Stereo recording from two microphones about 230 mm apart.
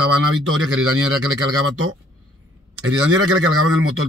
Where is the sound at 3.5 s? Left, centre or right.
Right.